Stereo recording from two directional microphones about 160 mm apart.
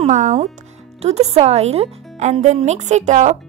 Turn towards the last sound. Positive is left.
turn(degrees=-50)  # may be behind; listen again after turning